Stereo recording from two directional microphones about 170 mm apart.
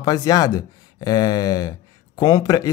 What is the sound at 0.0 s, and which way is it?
Speech, 20° left (ahead or behind).